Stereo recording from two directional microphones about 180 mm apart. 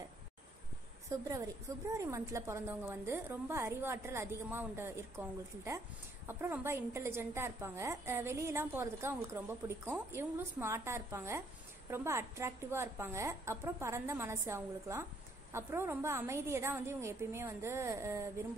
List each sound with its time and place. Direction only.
1.3 s a woman's voice: 15° right (ahead or behind)